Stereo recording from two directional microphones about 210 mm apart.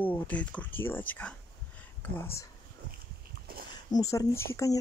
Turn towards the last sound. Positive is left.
turn(degrees=15)  # may be behind; listen again after turning